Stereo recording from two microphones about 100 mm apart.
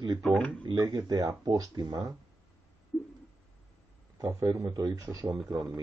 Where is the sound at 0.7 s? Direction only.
40° right (ahead or behind).